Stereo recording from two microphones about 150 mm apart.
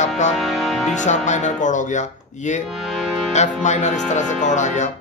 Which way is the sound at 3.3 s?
50° left (ahead or behind).